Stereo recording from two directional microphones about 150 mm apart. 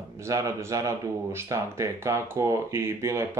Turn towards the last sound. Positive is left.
turn(degrees=-20)  # may be behind; listen again after turning